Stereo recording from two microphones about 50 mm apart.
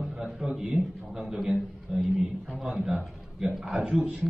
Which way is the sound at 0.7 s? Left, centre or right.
Right.